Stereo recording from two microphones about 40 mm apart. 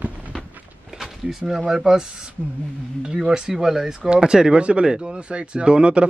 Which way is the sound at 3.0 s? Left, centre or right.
Centre.